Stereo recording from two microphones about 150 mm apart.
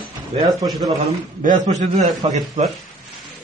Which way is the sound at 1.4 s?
55° right (ahead or behind).